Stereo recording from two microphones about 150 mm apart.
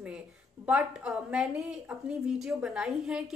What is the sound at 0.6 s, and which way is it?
A woman's voice, 5° right (ahead or behind).